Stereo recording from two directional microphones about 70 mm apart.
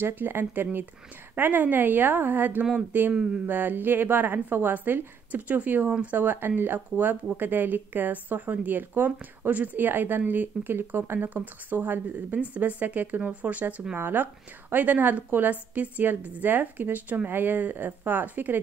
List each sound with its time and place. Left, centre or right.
0.0 s speech: right